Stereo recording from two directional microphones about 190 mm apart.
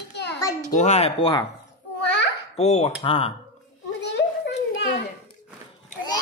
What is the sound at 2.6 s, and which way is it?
Speech, 35° left (ahead or behind).